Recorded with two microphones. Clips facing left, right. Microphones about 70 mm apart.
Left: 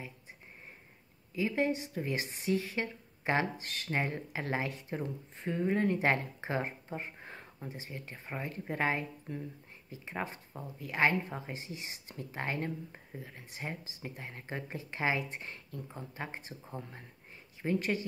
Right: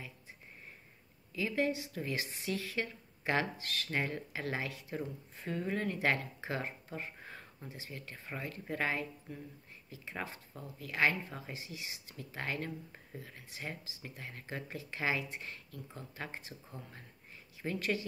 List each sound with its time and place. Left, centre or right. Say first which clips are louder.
1.3 s speech: left 2 dB; left